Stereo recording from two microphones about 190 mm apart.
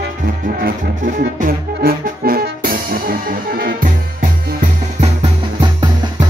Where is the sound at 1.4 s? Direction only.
50° right (ahead or behind).